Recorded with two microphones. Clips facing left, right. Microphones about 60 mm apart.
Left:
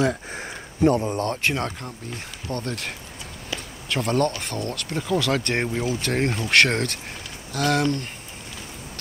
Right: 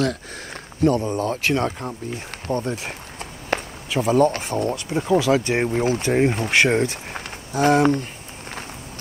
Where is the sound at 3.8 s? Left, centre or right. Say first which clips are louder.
Right 5 dB; centre.